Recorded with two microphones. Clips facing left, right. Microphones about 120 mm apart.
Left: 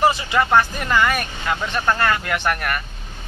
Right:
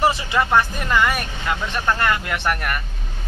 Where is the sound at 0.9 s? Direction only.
15° right (ahead or behind).